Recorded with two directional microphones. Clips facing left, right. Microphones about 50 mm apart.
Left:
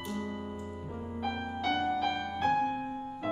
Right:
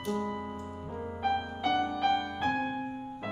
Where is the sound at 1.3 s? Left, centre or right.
Centre.